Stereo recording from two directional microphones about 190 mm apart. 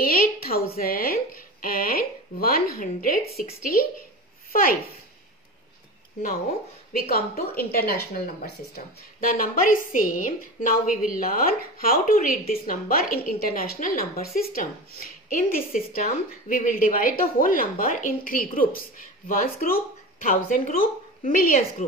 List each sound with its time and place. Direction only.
0.0 s a sound: 50° left (ahead or behind)
3.4 s a woman's voice: 45° left (ahead or behind)
6.9 s a woman's voice: 50° left (ahead or behind)